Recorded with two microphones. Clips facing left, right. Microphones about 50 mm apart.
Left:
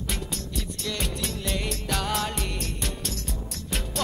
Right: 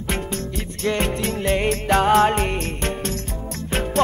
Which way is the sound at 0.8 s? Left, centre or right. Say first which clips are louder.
Right 11 dB; right.